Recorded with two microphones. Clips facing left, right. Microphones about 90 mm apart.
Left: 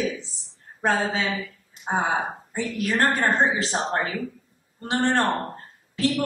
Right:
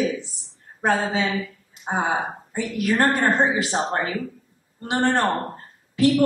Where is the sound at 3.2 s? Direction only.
15° right (ahead or behind).